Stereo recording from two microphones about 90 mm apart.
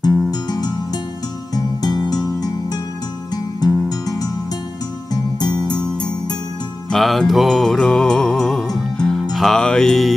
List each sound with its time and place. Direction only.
0.3 s music: 50° left (ahead or behind)
6.9 s music: centre (ahead or behind)